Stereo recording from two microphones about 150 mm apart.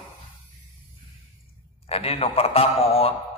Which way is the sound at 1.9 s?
40° left (ahead or behind).